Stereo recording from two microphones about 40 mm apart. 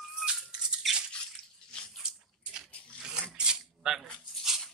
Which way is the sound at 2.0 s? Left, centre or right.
Centre.